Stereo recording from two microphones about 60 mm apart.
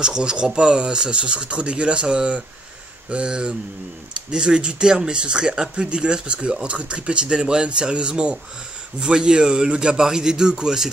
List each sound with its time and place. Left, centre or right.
0.0 s speech: centre